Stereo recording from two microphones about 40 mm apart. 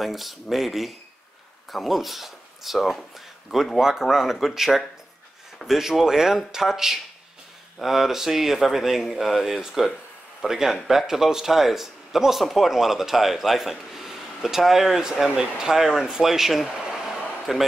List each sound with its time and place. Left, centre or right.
0.0 s speech: centre
3.8 s speech: centre
16.9 s a sound: centre